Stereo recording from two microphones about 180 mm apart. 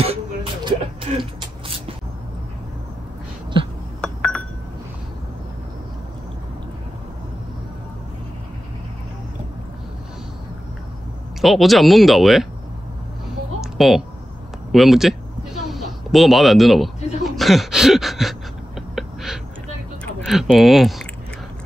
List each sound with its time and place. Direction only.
0.0 s music: 30° right (ahead or behind)
4.0 s glass: 5° left (ahead or behind)
11.4 s speech: centre (ahead or behind)
13.6 s a sound: centre (ahead or behind)
14.7 s speech: centre (ahead or behind)
18.8 s a sound: centre (ahead or behind)
20.2 s speech: centre (ahead or behind)